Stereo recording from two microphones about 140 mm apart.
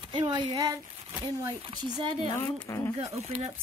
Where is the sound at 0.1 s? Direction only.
35° right (ahead or behind).